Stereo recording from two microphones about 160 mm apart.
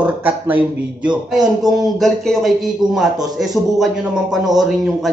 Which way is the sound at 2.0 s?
Centre (ahead or behind).